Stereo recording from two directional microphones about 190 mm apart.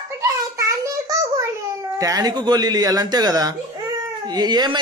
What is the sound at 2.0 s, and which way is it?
Speech, 20° right (ahead or behind).